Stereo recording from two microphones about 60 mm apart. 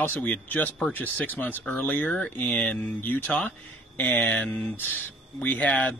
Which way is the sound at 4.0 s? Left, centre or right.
Left.